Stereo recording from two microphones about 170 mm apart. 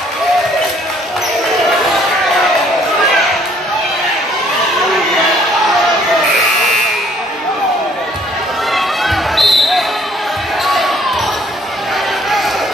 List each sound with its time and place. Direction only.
8.7 s basketball bounce: centre (ahead or behind)